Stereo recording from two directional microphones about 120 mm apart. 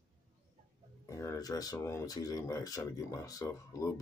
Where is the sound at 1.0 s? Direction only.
25° left (ahead or behind).